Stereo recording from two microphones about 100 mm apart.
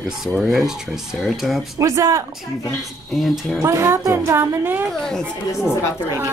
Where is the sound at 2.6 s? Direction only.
Centre (ahead or behind).